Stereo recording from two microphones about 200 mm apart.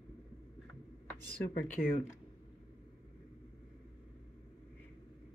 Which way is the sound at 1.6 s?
40° left (ahead or behind).